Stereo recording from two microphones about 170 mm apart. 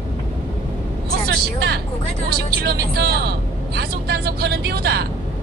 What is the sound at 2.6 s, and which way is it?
A woman's voice, 70° right (ahead or behind).